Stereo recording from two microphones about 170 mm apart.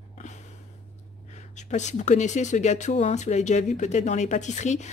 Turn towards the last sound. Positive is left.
turn(degrees=45)  # may be behind; listen again after turning